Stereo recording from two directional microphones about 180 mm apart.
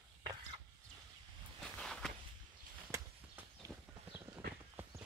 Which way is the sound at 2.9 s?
15° right (ahead or behind).